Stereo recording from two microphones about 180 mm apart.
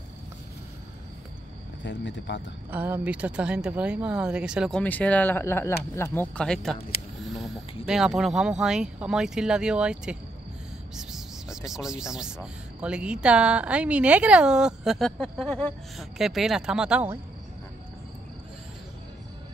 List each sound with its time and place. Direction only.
1.8 s speech: 90° left
2.7 s speech: 10° right (ahead or behind)
7.8 s speech: 5° right (ahead or behind)